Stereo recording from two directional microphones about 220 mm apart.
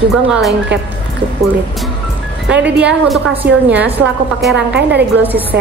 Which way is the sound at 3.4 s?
45° right (ahead or behind).